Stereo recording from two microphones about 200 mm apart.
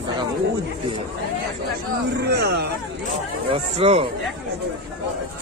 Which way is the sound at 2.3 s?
55° right (ahead or behind).